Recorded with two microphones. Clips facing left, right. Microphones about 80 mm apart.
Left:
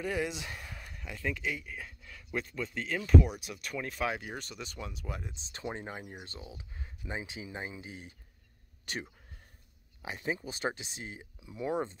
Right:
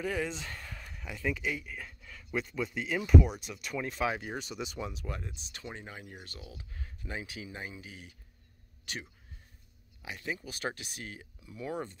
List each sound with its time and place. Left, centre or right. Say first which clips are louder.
0.0 s a man's voice: even; centre
5.2 s speech: left 4 dB; left
6.0 s speech: left 2 dB; left